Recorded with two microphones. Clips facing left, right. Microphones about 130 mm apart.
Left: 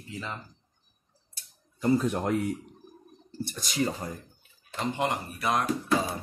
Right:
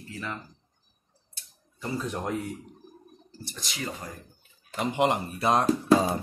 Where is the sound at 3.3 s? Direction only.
50° left (ahead or behind).